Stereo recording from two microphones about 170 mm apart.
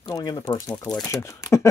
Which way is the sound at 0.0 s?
25° left (ahead or behind).